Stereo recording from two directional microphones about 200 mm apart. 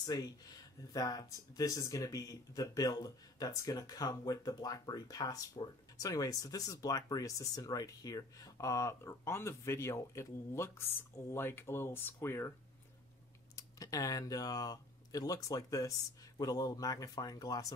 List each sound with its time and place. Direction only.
0.0 s speech: 20° left (ahead or behind)
13.6 s speech: 15° left (ahead or behind)